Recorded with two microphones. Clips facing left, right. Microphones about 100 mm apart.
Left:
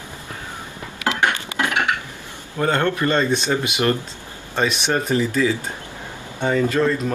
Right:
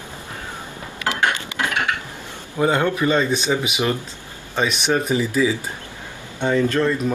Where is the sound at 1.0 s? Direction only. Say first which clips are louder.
Left 1 dB; 20° left (ahead or behind).